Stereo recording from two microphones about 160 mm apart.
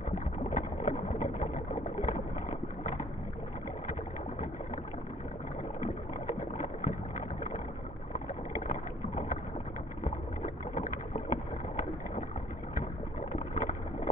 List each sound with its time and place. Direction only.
0.1 s a sound: 50° left (ahead or behind)
2.8 s boat: 50° left (ahead or behind)
5.8 s boat: 50° left (ahead or behind)
13.3 s vehicle: 50° left (ahead or behind)